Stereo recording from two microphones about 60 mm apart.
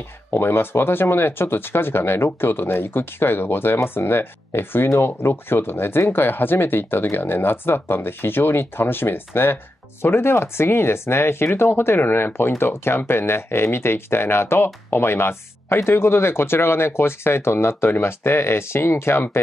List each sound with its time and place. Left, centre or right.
0.3 s speech: left